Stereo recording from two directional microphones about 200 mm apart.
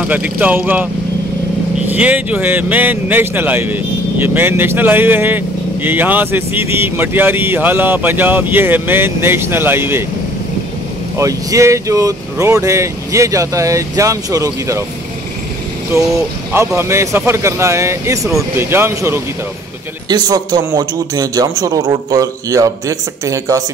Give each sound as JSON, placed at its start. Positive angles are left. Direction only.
{"t": 0.1, "sound": "speech", "side_deg": -10}
{"t": 1.9, "sound": "speech", "side_deg": -10}
{"t": 11.1, "sound": "speech", "side_deg": -15}
{"t": 15.9, "sound": "a man's voice", "side_deg": -15}